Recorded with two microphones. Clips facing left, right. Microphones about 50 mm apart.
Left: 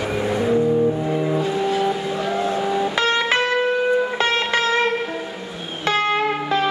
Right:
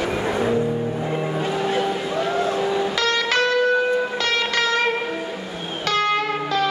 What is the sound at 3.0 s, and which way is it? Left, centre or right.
Music, left.